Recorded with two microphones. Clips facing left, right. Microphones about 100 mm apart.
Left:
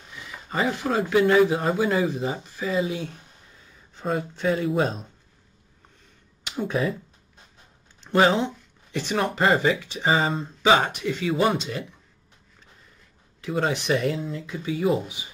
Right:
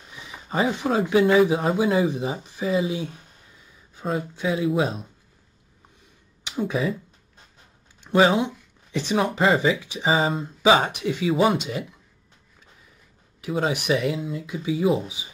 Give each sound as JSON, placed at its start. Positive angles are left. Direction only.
{"t": 0.1, "sound": "a sound", "side_deg": -20}
{"t": 0.7, "sound": "speech", "side_deg": -15}
{"t": 2.0, "sound": "speech", "side_deg": -15}
{"t": 6.5, "sound": "speech", "side_deg": -5}
{"t": 8.0, "sound": "speech", "side_deg": -10}
{"t": 13.4, "sound": "speech", "side_deg": -10}